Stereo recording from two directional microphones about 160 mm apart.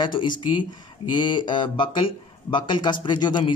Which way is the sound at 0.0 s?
30° left (ahead or behind).